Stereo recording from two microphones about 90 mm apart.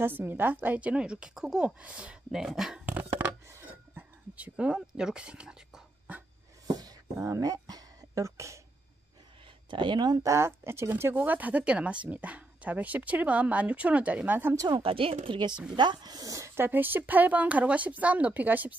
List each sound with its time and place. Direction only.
0.0 s speech: 25° right (ahead or behind); by 2.8 s 5° right (ahead or behind)
2.8 s a sound: 20° right (ahead or behind)
4.4 s speech: 10° right (ahead or behind)
6.7 s a sound: 40° right (ahead or behind)
9.7 s speech: 60° right (ahead or behind)
10.2 s speech: 30° right (ahead or behind)
14.7 s speech: 90° right; by 15.5 s 70° right (ahead or behind)
15.7 s speech: 55° right (ahead or behind); by 18.8 s 20° right (ahead or behind)